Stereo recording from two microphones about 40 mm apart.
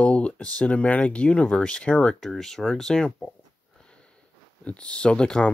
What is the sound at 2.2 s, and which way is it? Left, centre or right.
Speech, centre.